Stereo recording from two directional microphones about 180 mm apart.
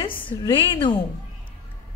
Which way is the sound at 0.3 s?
25° left (ahead or behind).